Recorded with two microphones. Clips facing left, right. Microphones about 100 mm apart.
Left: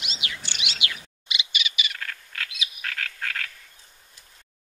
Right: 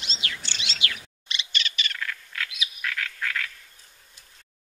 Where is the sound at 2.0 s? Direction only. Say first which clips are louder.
Right 2 dB; 45° left (ahead or behind).